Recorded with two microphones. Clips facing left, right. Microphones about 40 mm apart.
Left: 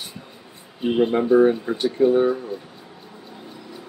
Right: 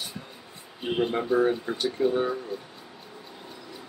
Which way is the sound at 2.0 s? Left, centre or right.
Left.